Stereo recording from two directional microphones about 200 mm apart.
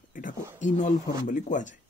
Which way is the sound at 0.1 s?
40° left (ahead or behind).